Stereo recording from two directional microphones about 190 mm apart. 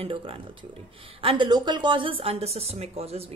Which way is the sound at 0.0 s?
25° right (ahead or behind).